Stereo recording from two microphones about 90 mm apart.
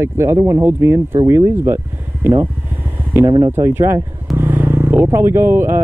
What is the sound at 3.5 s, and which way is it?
Vehicle, 30° right (ahead or behind).